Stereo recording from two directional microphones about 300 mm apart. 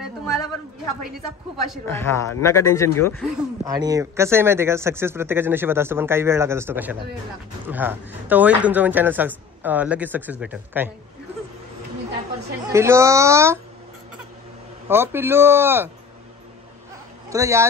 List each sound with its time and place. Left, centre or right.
1.7 s speech: centre
3.6 s speech: centre
12.4 s chatter: right
12.7 s speech: centre
14.9 s speech: centre
17.3 s speech: centre